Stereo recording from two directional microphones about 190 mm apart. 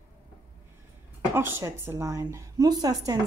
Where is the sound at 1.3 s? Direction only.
10° right (ahead or behind).